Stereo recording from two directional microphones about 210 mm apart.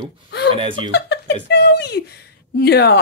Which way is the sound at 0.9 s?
50° left (ahead or behind).